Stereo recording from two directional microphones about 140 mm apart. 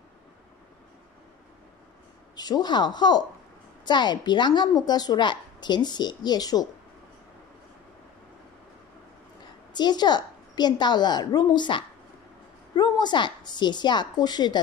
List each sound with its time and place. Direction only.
2.3 s a woman's voice: 30° left (ahead or behind)
9.8 s a woman's voice: 30° left (ahead or behind)